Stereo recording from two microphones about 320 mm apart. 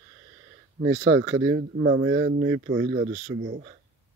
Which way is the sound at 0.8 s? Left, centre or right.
Right.